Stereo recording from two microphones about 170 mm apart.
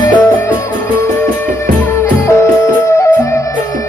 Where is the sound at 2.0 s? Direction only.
15° left (ahead or behind).